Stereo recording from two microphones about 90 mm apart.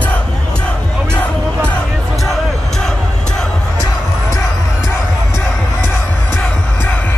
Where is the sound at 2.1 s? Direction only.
5° left (ahead or behind).